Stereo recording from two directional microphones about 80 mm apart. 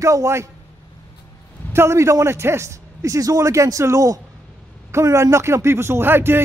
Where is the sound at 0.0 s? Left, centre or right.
Right.